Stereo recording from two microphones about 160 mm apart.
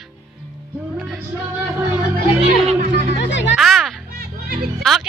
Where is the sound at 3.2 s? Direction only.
90° left.